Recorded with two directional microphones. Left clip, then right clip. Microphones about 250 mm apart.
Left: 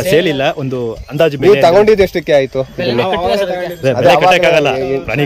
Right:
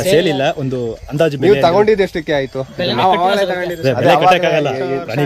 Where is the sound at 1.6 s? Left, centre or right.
Left.